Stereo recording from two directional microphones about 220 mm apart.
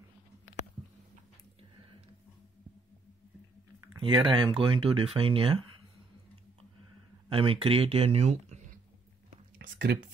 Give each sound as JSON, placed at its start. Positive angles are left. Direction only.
{"t": 4.0, "sound": "speech", "side_deg": -20}
{"t": 7.2, "sound": "speech", "side_deg": -25}
{"t": 9.6, "sound": "whispering", "side_deg": -50}